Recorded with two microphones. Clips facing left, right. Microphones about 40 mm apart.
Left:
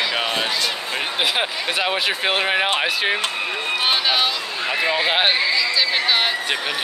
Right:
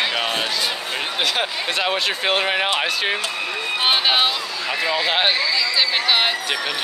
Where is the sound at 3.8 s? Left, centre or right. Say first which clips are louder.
Right 2 dB; right.